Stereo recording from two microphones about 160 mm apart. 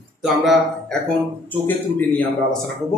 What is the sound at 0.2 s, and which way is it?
Speech, centre (ahead or behind).